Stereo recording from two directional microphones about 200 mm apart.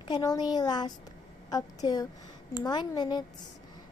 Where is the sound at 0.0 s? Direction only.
20° left (ahead or behind).